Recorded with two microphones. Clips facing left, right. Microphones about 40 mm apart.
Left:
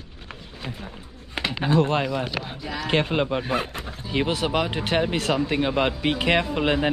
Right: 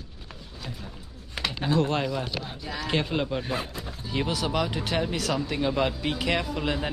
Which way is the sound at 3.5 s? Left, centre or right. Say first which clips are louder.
Left 5 dB; left.